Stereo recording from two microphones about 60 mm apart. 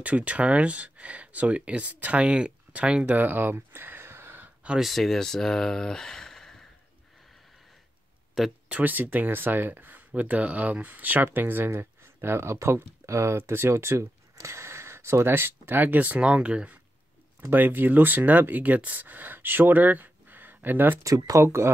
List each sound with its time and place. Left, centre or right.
0.0 s speech: right
3.2 s a sound: right
4.7 s speech: centre
8.6 s speech: right
17.5 s speech: right
21.0 s speech: right